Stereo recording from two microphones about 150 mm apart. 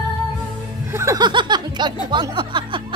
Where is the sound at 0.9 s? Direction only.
20° right (ahead or behind).